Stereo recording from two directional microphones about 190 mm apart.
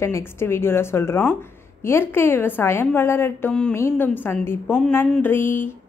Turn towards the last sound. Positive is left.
turn(degrees=10)  # may be behind; listen again after turning